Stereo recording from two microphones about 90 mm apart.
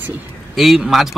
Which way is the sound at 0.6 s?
Centre (ahead or behind).